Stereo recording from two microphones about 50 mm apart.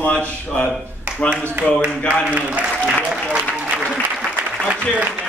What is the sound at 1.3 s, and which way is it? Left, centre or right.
Speech, centre.